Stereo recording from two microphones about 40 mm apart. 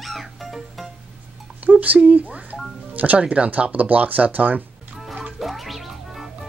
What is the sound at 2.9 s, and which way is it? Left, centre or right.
Music, right.